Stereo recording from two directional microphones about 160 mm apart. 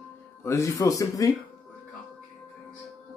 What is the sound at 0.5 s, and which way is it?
Speech, 20° left (ahead or behind).